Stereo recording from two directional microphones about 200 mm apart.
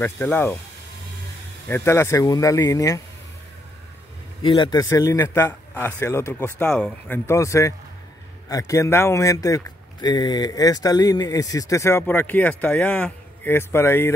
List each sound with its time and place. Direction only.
0.0 s speech: 10° left (ahead or behind)
1.7 s speech: 15° left (ahead or behind)
4.4 s speech: 25° left (ahead or behind)